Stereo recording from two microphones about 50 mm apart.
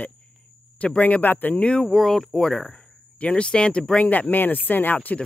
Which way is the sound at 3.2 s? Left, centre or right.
Left.